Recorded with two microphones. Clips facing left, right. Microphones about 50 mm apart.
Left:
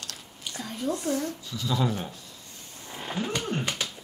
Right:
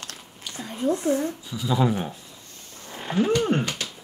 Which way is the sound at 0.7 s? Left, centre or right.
Right.